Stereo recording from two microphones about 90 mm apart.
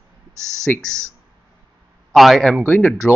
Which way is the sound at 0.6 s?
5° left (ahead or behind).